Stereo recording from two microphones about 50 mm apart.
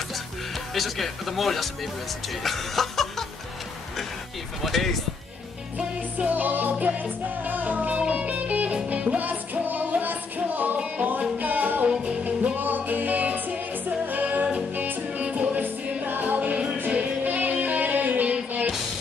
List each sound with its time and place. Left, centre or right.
0.7 s speech: centre
2.4 s music: centre
4.6 s speech: centre
6.1 s music: right
8.0 s music: centre
8.3 s music: right
11.9 s music: right
14.7 s music: right